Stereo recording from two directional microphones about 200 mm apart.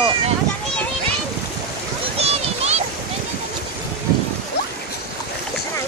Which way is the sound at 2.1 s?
30° right (ahead or behind).